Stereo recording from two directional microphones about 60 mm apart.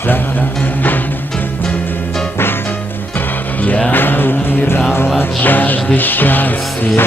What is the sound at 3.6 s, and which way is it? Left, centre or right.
Music, left.